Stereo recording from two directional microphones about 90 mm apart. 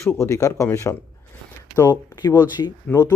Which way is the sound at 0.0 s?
35° left (ahead or behind).